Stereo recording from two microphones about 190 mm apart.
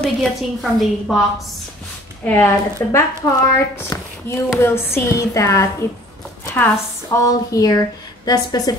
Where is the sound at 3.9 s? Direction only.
15° left (ahead or behind).